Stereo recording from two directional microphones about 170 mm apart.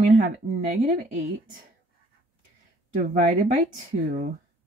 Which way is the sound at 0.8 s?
45° right (ahead or behind).